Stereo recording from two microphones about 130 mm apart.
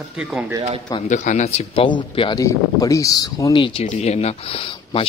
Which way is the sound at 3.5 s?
40° left (ahead or behind).